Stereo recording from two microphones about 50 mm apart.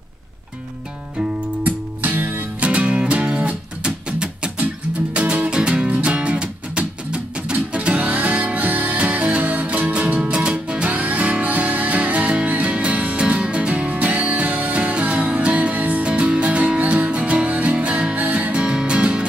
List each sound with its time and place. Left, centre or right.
1.6 s music: right
2.6 s music: right